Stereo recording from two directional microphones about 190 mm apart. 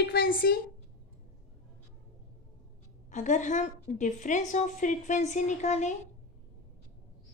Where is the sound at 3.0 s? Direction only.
40° left (ahead or behind).